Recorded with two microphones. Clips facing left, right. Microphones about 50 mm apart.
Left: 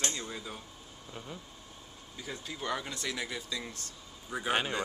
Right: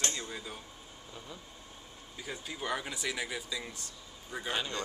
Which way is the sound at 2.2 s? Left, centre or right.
Centre.